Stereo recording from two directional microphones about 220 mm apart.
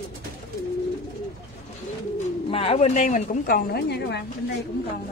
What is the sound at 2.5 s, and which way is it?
A woman's voice, 25° left (ahead or behind).